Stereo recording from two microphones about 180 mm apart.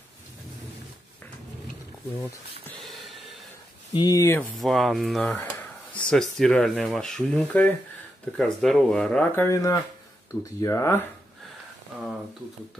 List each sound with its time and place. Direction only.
2.8 s a sound: centre (ahead or behind)
3.9 s speech: 20° left (ahead or behind)
4.6 s speech: centre (ahead or behind); by 11.1 s 15° left (ahead or behind)